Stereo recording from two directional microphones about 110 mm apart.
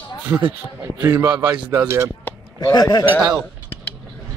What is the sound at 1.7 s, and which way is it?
Speech, 20° right (ahead or behind).